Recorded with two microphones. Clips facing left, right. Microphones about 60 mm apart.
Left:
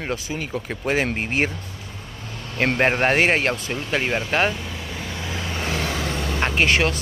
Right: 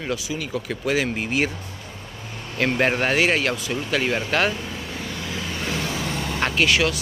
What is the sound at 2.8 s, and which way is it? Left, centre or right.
Speech, left.